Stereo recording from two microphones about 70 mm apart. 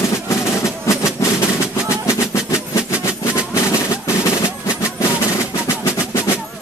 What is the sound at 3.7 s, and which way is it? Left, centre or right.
Drum, left.